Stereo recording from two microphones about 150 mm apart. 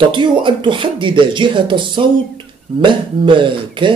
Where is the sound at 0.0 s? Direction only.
30° right (ahead or behind).